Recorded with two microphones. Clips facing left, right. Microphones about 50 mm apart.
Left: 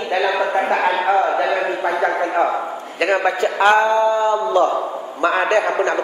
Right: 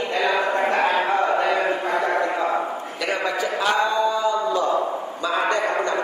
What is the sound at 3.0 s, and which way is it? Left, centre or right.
A man's voice, left.